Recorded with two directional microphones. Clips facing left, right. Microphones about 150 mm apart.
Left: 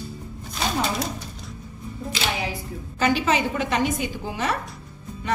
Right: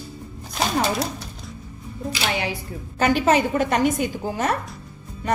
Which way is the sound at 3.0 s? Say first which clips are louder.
Right 3 dB; 50° right (ahead or behind).